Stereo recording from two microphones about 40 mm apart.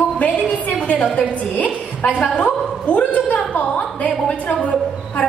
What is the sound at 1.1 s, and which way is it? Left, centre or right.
A woman's voice, left.